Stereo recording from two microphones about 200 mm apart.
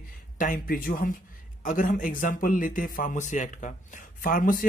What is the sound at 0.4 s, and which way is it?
Speech, 45° left (ahead or behind).